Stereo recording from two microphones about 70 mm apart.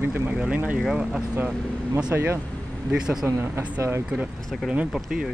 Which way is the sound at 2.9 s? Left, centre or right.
Centre.